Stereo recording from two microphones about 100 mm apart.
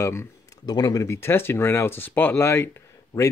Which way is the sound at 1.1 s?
25° left (ahead or behind).